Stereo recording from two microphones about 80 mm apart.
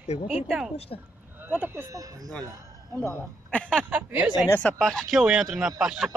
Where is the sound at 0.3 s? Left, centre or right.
Centre.